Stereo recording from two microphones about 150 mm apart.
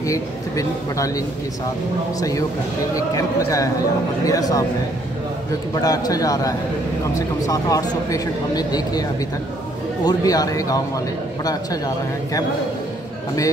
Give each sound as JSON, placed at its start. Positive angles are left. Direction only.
{"t": 0.0, "sound": "speech", "side_deg": 20}
{"t": 5.8, "sound": "speech", "side_deg": 25}
{"t": 10.0, "sound": "speech", "side_deg": 25}